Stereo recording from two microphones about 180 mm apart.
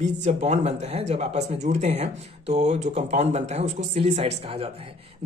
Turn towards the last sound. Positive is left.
turn(degrees=-35)  # may be behind; listen again after turning